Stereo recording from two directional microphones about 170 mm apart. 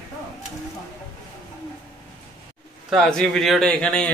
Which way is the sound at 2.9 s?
5° left (ahead or behind).